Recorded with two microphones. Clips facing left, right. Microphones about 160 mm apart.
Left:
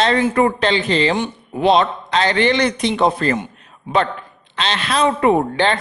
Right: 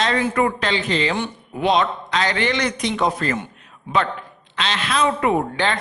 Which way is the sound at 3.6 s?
35° left (ahead or behind).